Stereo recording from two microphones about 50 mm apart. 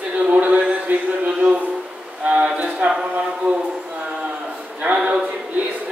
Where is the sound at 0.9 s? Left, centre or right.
Right.